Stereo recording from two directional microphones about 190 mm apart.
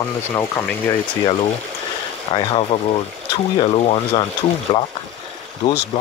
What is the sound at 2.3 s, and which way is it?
Speech, 30° left (ahead or behind).